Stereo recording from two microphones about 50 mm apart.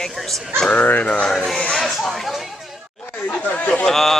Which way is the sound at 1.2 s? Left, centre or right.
Centre.